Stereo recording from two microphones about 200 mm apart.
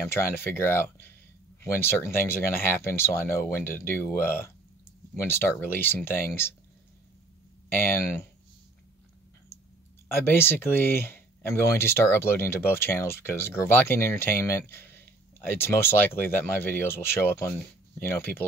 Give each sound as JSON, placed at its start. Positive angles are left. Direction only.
{"t": 0.0, "sound": "speech", "side_deg": 10}
{"t": 7.7, "sound": "speech", "side_deg": 10}
{"t": 10.0, "sound": "speech", "side_deg": 10}